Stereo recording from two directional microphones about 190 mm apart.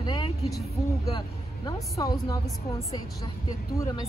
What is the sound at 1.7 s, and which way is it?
Speech, 20° left (ahead or behind).